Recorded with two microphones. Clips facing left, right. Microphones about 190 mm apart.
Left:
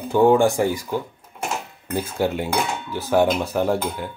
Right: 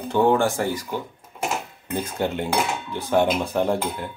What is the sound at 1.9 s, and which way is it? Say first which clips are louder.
Speech: left 2 dB; 5° left (ahead or behind).